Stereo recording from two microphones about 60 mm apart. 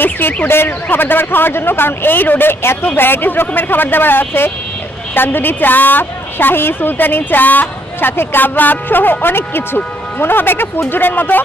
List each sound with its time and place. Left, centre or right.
0.0 s a woman's voice: left